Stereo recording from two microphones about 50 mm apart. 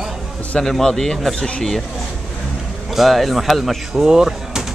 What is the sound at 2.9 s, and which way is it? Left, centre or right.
Speech, centre.